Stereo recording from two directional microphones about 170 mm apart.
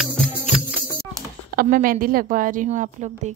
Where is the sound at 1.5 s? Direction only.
60° right (ahead or behind).